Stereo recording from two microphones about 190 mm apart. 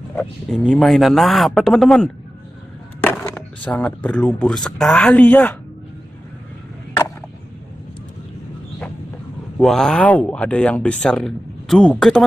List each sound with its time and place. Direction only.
0.1 s speech: 5° left (ahead or behind)
9.6 s speech: 5° left (ahead or behind)